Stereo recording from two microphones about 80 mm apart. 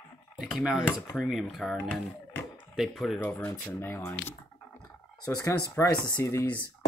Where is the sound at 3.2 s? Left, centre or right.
Left.